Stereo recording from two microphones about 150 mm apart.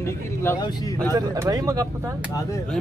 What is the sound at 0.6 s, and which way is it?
Speech, 25° left (ahead or behind).